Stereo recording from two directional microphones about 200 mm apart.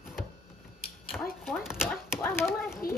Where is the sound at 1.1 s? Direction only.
10° left (ahead or behind).